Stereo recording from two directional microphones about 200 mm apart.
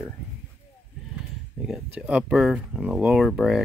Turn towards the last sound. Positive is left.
turn(degrees=0)  # may be behind; listen again after turning